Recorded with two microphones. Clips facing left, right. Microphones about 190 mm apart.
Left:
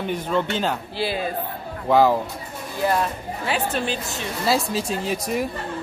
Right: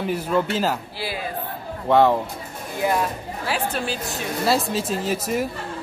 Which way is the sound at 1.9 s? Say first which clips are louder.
Even; centre (ahead or behind).